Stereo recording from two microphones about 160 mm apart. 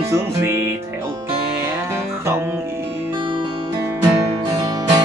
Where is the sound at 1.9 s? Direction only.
15° right (ahead or behind).